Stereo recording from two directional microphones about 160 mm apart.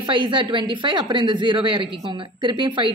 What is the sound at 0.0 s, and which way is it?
Speech, 30° right (ahead or behind).